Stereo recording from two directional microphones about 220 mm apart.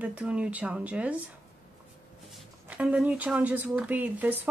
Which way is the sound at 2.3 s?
5° right (ahead or behind).